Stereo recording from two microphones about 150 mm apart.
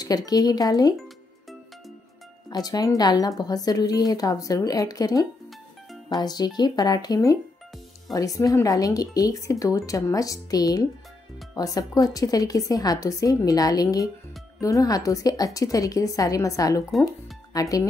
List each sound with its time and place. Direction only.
0.0 s a woman's voice: 25° left (ahead or behind)
2.5 s a woman's voice: 25° left (ahead or behind)